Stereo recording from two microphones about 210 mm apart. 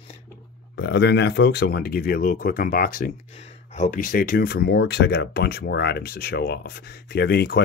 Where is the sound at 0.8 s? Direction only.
60° left (ahead or behind).